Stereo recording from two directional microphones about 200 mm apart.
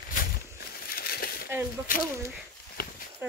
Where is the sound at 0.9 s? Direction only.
50° left (ahead or behind).